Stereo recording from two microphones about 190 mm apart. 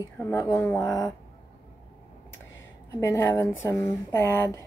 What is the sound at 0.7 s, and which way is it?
Speech, 15° left (ahead or behind).